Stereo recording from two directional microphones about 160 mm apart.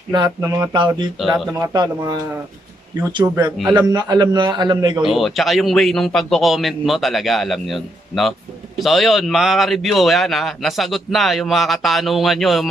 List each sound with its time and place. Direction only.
0.1 s a man's voice: 25° right (ahead or behind)
1.1 s a man's voice: centre (ahead or behind)
1.6 s a man's voice: 25° right (ahead or behind)
5.0 s a man's voice: centre (ahead or behind)